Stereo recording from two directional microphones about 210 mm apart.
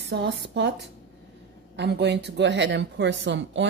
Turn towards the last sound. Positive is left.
turn(degrees=-60)  # may be behind; listen again after turning